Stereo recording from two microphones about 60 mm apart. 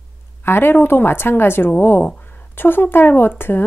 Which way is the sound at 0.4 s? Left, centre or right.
Left.